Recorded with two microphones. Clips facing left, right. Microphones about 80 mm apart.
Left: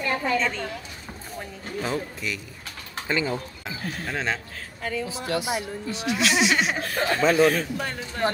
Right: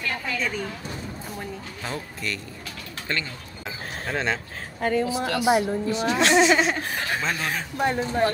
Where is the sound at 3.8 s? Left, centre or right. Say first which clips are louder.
Left 1 dB; right.